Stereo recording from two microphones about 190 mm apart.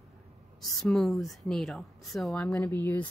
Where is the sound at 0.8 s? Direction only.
Centre (ahead or behind).